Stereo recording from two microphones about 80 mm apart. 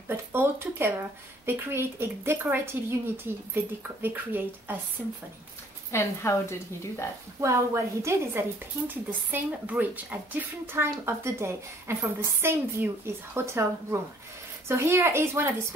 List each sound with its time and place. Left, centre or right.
0.1 s a woman's voice: right
4.0 s a woman's voice: right
5.9 s a woman's voice: left
7.3 s speech: right
8.8 s speech: right